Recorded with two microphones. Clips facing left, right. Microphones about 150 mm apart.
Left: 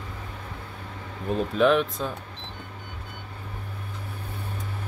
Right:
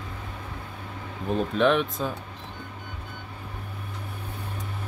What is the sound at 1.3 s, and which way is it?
Speech, centre (ahead or behind).